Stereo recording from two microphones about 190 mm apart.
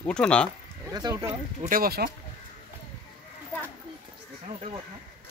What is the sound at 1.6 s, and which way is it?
Speech, 50° right (ahead or behind).